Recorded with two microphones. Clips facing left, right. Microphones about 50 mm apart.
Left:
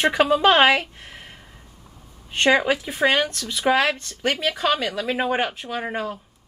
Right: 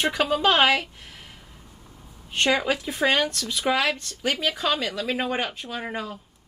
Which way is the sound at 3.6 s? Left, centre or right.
Left.